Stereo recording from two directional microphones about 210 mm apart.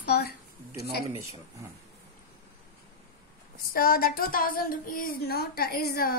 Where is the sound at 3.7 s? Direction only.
45° left (ahead or behind).